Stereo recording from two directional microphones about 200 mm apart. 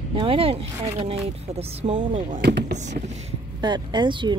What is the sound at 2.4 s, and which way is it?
Speech, 55° right (ahead or behind).